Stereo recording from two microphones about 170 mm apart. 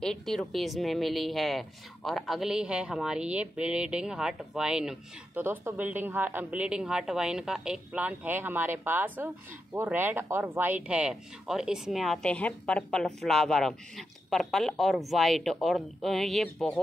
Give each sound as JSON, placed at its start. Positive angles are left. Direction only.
{"t": 0.0, "sound": "a woman's voice", "side_deg": 0}